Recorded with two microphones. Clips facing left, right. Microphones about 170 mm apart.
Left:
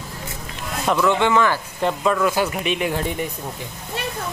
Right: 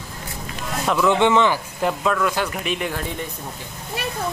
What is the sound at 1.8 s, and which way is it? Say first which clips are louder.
Speech: left 2 dB; 5° right (ahead or behind).